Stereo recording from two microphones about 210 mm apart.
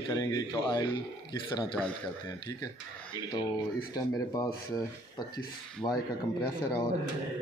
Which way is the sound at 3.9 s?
20° left (ahead or behind).